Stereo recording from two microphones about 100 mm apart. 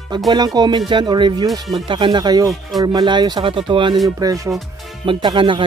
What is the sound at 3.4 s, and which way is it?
Speech, 60° right (ahead or behind).